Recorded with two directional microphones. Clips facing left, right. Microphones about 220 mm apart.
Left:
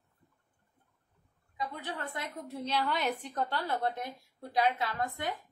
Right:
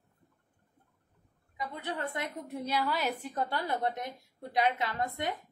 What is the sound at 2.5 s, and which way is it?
A woman's voice, 10° right (ahead or behind).